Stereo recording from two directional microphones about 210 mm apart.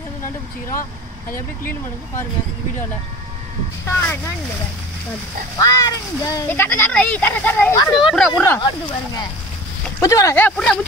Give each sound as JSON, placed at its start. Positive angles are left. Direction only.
{"t": 1.3, "sound": "speech", "side_deg": 10}
{"t": 3.8, "sound": "speech", "side_deg": 10}
{"t": 5.6, "sound": "speech", "side_deg": 15}
{"t": 8.1, "sound": "speech", "side_deg": 0}
{"t": 8.5, "sound": "speech", "side_deg": 20}